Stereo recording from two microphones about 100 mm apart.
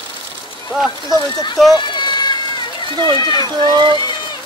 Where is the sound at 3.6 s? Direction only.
50° right (ahead or behind).